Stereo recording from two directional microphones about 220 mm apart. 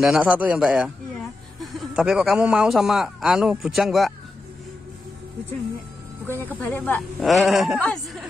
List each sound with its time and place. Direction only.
0.0 s a man's voice: 5° right (ahead or behind)
6.2 s a man's voice: 10° left (ahead or behind)